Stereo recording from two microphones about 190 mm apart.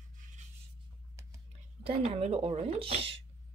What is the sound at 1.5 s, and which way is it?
Speech, 30° right (ahead or behind).